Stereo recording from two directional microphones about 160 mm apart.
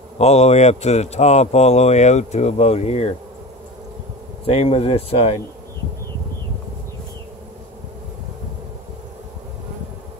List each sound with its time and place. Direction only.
0.2 s speech: 40° left (ahead or behind)
4.5 s speech: 35° left (ahead or behind)